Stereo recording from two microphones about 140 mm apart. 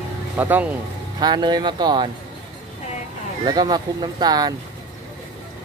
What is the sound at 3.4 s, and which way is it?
Speech, 30° right (ahead or behind).